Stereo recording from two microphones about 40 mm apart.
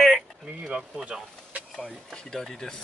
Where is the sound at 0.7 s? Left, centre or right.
Centre.